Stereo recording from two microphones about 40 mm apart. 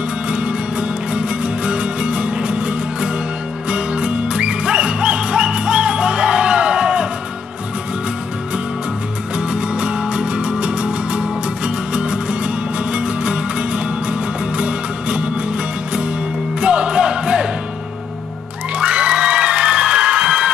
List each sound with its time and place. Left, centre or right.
0.3 s music: right
9.4 s music: right
16.6 s music: right
18.8 s music: right